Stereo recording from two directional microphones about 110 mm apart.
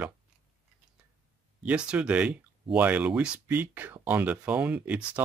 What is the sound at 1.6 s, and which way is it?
Speech, 10° right (ahead or behind).